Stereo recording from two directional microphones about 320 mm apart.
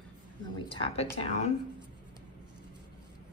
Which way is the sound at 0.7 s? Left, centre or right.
Centre.